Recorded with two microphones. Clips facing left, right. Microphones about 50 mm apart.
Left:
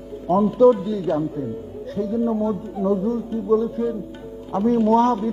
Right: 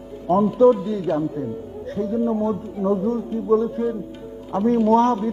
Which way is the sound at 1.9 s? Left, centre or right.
Right.